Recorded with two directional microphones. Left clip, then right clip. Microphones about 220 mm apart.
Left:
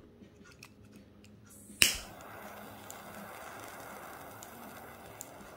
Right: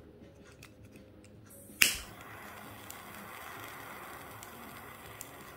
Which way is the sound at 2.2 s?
15° left (ahead or behind).